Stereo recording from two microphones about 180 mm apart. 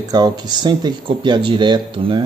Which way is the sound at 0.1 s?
25° right (ahead or behind).